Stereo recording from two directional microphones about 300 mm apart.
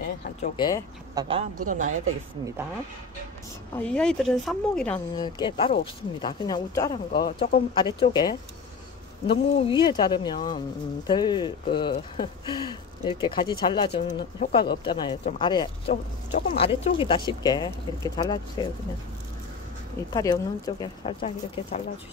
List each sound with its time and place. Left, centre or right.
0.0 s a sound: left
0.6 s speech: centre
1.1 s speech: centre
3.7 s speech: centre
20.1 s speech: centre